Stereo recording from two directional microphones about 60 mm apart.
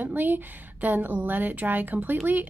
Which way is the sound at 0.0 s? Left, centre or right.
Right.